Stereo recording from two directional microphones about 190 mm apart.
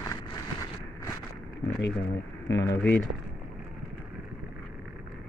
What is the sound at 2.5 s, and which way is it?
Speech, 15° left (ahead or behind).